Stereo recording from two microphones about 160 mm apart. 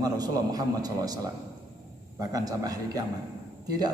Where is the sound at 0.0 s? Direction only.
25° right (ahead or behind).